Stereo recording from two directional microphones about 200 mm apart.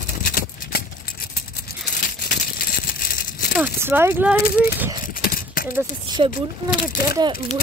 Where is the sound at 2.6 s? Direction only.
45° left (ahead or behind).